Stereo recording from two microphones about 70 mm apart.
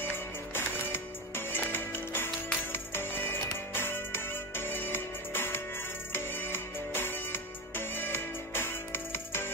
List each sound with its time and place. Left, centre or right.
0.0 s music: left